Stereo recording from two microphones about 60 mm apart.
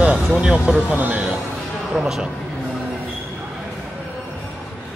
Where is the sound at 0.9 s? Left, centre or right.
Right.